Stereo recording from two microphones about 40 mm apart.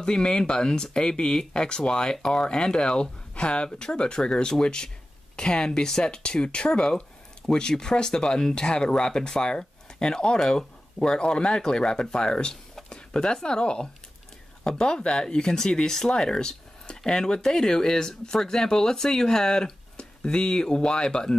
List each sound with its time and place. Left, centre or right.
0.0 s speech: left